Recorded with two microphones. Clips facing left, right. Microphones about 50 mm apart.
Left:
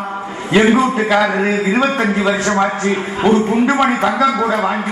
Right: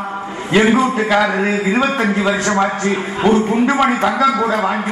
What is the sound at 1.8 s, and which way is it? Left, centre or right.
Speech, left.